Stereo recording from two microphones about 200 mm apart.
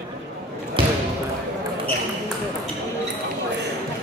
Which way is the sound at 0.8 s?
25° right (ahead or behind).